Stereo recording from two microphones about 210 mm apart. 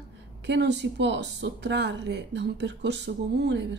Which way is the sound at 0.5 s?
55° right (ahead or behind).